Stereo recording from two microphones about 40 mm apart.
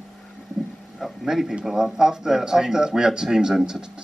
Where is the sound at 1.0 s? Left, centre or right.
Centre.